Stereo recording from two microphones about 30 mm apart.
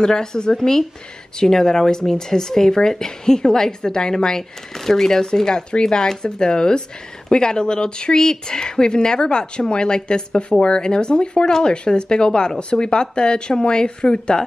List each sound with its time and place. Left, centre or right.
0.0 s speech: left
4.4 s speech: centre; by 14.4 s left